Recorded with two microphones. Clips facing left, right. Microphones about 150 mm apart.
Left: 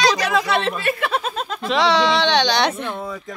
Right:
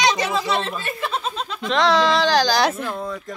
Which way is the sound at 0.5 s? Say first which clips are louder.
Left 4 dB; 65° left (ahead or behind).